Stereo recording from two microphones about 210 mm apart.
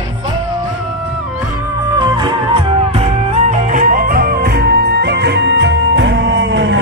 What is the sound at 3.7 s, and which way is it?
Music, 40° right (ahead or behind).